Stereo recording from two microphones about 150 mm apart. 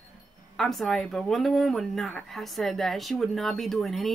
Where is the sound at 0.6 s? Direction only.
Centre (ahead or behind).